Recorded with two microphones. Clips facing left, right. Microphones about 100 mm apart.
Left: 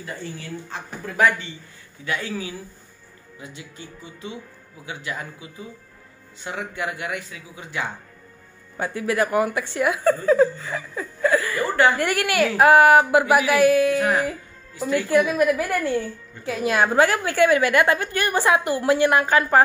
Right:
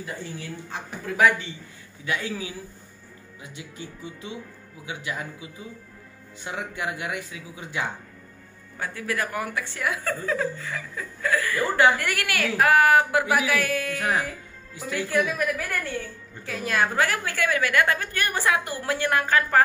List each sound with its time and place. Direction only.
0.0 s speech: 5° right (ahead or behind)
3.5 s speech: 10° right (ahead or behind)
8.7 s a woman's voice: 20° left (ahead or behind)
14.0 s a woman's voice: 5° left (ahead or behind); by 19.6 s 20° left (ahead or behind)